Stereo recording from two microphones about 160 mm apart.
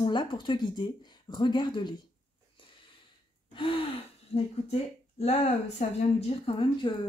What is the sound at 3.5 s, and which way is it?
Speech, 35° left (ahead or behind).